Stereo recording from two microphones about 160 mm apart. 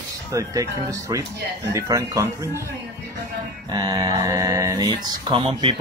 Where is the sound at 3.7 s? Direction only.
25° right (ahead or behind).